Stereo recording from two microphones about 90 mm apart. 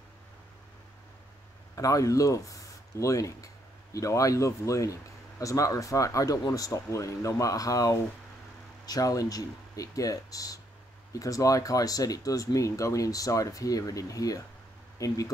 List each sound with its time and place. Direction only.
1.8 s speech: 40° left (ahead or behind)